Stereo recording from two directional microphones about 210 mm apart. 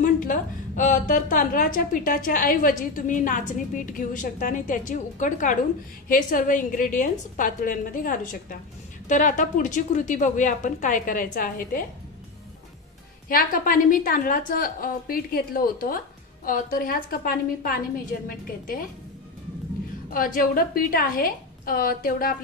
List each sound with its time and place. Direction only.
0.0 s a woman's voice: 40° left (ahead or behind)
13.3 s a woman's voice: 40° left (ahead or behind)
20.1 s a woman's voice: 40° left (ahead or behind)